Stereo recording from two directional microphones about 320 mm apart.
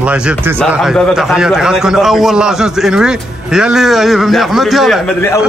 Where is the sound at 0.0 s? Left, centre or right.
Centre.